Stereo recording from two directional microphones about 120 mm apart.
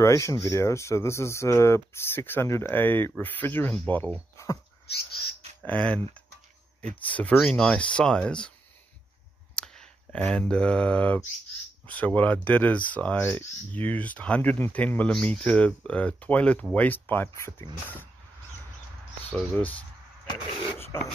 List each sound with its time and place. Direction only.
0.0 s speech: 25° left (ahead or behind)
5.7 s speech: 10° left (ahead or behind)
7.1 s speech: 10° left (ahead or behind)
9.6 s speech: 5° left (ahead or behind)
19.3 s speech: 5° left (ahead or behind)
20.7 s speech: 20° left (ahead or behind)